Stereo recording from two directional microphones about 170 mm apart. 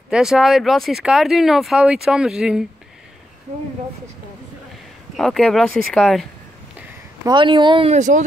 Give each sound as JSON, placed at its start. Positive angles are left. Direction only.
{"t": 0.1, "sound": "speech", "side_deg": 0}
{"t": 5.1, "sound": "speech", "side_deg": 0}
{"t": 7.2, "sound": "speech", "side_deg": -30}
{"t": 7.9, "sound": "speech", "side_deg": -45}